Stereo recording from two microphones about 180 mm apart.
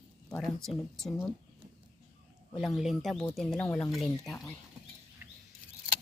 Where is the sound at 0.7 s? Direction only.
Centre (ahead or behind).